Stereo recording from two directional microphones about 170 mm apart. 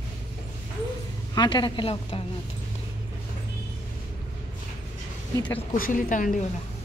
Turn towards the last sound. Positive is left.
turn(degrees=55)  # may be behind; listen again after turning